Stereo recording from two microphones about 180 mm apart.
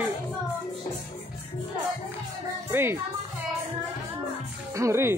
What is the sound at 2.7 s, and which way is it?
Speech, 10° right (ahead or behind).